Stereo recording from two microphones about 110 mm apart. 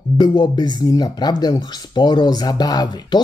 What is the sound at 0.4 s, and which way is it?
Speech, 40° left (ahead or behind).